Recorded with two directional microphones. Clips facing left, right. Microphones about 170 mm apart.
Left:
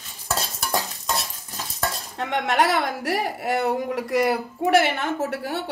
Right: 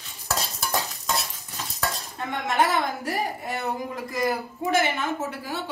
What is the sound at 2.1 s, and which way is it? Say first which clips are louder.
Speech: left 3 dB; 75° left (ahead or behind).